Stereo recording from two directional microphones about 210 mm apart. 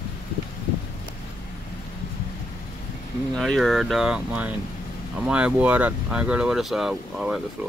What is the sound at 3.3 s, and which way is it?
Speech, centre (ahead or behind).